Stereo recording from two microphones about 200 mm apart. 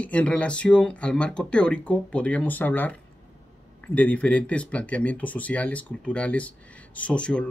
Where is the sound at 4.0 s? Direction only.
5° left (ahead or behind).